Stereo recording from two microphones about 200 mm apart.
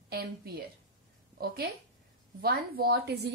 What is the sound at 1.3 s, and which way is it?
A woman's voice, 50° right (ahead or behind).